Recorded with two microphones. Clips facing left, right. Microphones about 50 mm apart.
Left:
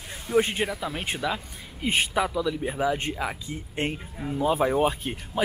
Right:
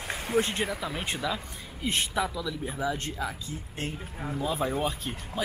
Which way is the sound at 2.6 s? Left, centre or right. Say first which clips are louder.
Left 5 dB; left.